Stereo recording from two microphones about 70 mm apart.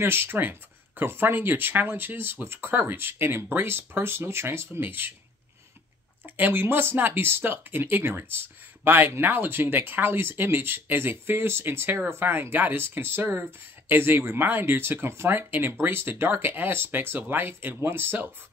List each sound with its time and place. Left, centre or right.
0.0 s speech: right
6.2 s speech: right